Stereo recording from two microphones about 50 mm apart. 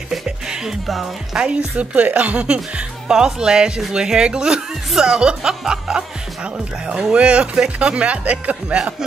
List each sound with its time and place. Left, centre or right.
0.1 s music: centre
1.8 s speech: right
3.1 s speech: centre